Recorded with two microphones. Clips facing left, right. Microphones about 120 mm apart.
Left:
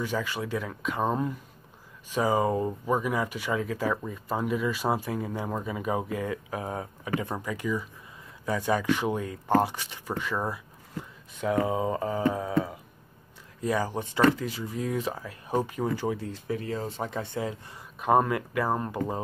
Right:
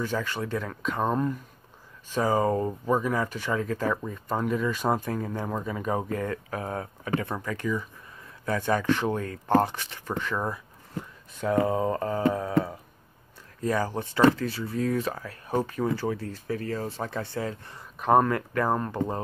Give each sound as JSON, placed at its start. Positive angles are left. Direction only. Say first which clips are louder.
{"t": 0.0, "sound": "speech", "louder": "right 1 dB", "side_deg": 10}
{"t": 11.6, "sound": "speech", "louder": "right 2 dB", "side_deg": 15}
{"t": 13.6, "sound": "speech", "louder": "right 1 dB", "side_deg": 15}
{"t": 17.9, "sound": "speech", "louder": "right 2 dB", "side_deg": 0}